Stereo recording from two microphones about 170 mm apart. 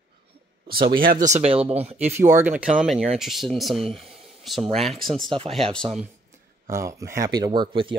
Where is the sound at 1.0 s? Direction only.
50° right (ahead or behind).